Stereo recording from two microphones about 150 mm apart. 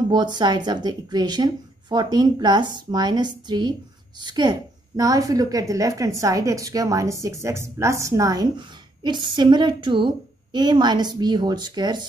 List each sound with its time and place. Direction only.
0.1 s a woman's voice: 30° right (ahead or behind)